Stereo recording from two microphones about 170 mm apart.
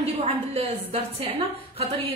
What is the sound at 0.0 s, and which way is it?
Speech, 35° right (ahead or behind).